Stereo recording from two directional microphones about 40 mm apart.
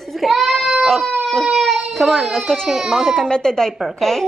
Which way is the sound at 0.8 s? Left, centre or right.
Centre.